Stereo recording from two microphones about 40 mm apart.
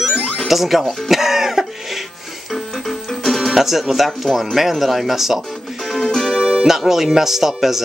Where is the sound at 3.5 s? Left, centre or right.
Centre.